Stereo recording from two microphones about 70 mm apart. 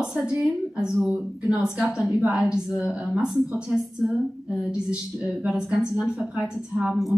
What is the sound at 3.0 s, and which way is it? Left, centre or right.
Speech, centre.